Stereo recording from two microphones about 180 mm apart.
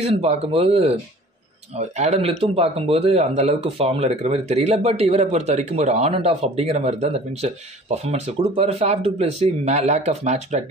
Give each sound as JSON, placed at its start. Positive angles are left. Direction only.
{"t": 0.0, "sound": "speech", "side_deg": -35}